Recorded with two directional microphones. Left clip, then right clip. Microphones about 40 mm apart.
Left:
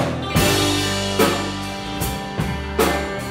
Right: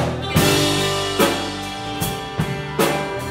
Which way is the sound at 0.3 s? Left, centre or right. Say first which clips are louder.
Right 1 dB; centre.